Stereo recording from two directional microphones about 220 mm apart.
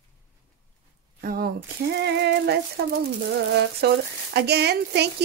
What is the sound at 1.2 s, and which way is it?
A woman's voice, 45° right (ahead or behind).